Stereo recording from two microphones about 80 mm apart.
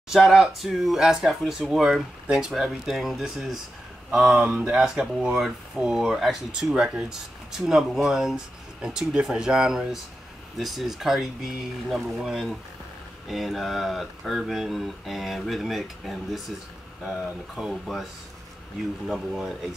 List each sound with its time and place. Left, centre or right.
0.1 s speech: centre
19.0 s speech: centre